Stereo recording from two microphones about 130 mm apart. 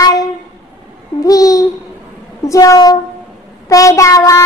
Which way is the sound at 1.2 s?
25° left (ahead or behind).